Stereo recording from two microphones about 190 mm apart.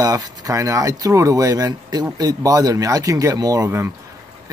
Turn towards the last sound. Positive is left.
turn(degrees=-15)  # may be behind; listen again after turning